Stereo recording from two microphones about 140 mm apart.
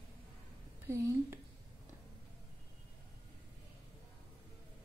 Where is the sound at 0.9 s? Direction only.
20° right (ahead or behind).